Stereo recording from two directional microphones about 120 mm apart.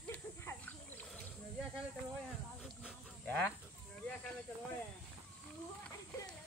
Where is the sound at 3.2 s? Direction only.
10° left (ahead or behind).